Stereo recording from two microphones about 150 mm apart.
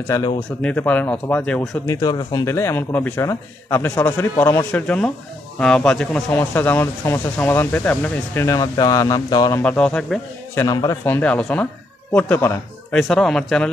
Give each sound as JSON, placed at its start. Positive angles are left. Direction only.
{"t": 0.0, "sound": "speech", "side_deg": 20}
{"t": 0.6, "sound": "speech", "side_deg": 10}
{"t": 1.9, "sound": "speech", "side_deg": 25}
{"t": 9.6, "sound": "speech", "side_deg": 10}
{"t": 10.5, "sound": "a man's voice", "side_deg": 15}